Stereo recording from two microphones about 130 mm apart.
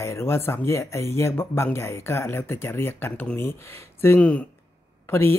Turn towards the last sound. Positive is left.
turn(degrees=20)  # may be behind; listen again after turning